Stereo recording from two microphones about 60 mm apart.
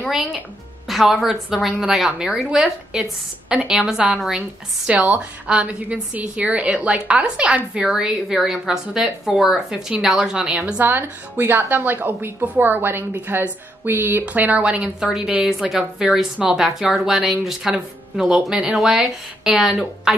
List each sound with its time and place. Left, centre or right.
0.1 s a woman's voice: centre
4.4 s a woman's voice: centre
7.8 s a woman's voice: centre
10.8 s a woman's voice: right
14.2 s a woman's voice: right
15.7 s a woman's voice: centre